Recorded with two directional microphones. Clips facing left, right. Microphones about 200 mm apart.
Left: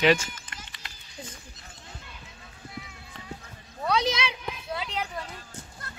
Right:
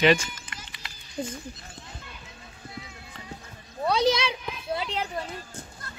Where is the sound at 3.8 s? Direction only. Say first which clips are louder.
Right 3 dB; 30° right (ahead or behind).